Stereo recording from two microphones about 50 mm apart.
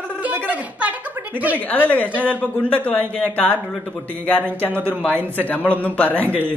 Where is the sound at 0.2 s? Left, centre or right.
Right.